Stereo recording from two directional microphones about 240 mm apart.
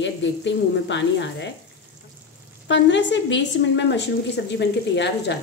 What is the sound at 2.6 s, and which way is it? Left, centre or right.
Speech, left.